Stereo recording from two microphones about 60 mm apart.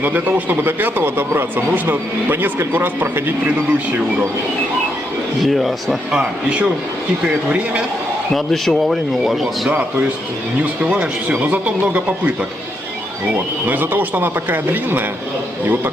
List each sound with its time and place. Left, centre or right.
0.0 s speech: right
5.4 s speech: centre
8.4 s speech: centre
10.6 s speech: right
13.7 s speech: right